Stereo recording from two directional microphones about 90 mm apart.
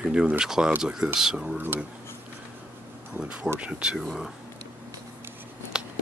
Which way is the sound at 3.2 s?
10° right (ahead or behind).